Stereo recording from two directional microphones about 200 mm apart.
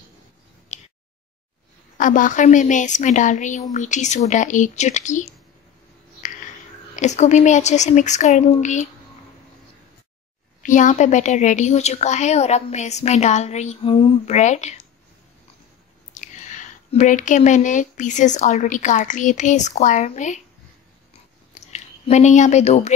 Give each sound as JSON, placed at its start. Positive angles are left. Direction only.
{"t": 0.7, "sound": "a sound", "side_deg": 35}
{"t": 2.0, "sound": "a woman's voice", "side_deg": 40}
{"t": 7.0, "sound": "a woman's voice", "side_deg": 35}
{"t": 10.6, "sound": "a woman's voice", "side_deg": 40}
{"t": 16.1, "sound": "speech", "side_deg": 40}
{"t": 21.5, "sound": "speech", "side_deg": 35}